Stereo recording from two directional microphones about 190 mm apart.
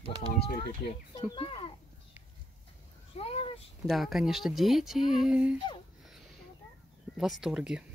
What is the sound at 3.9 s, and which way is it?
Speech, centre (ahead or behind).